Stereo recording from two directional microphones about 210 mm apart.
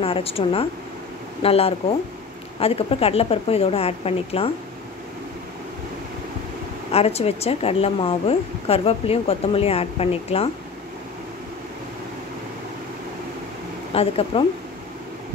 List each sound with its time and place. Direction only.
0.0 s a woman's voice: 25° left (ahead or behind)
6.9 s a woman's voice: 30° left (ahead or behind)
13.9 s a woman's voice: 25° left (ahead or behind)